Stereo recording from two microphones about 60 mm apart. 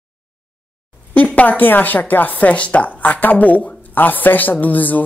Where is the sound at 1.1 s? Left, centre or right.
Left.